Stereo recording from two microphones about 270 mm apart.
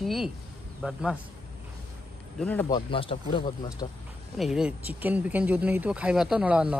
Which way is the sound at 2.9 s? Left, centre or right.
Centre.